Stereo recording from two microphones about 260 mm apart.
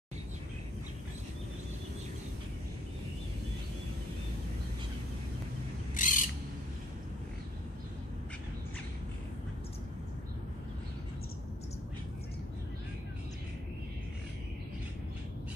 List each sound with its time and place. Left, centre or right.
5.9 s bird: left